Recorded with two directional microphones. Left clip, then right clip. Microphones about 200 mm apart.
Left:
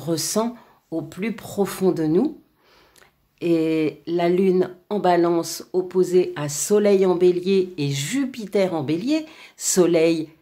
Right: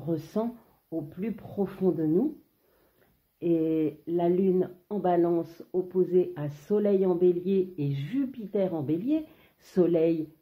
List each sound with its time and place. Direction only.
0.0 s speech: 15° left (ahead or behind)
3.3 s speech: 15° left (ahead or behind)